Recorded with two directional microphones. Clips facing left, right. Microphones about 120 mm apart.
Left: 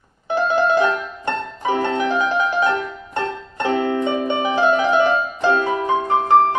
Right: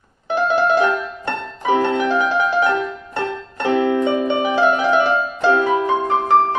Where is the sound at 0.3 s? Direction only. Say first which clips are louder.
Right 1 dB; 20° left (ahead or behind).